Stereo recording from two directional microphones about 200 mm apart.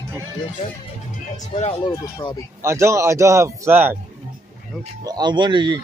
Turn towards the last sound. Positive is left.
turn(degrees=-25)  # may be behind; listen again after turning